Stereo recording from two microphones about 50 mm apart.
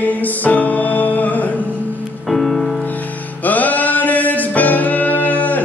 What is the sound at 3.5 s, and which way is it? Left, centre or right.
Music, left.